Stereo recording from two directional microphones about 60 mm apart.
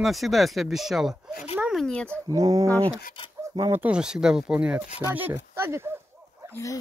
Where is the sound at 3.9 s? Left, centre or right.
Centre.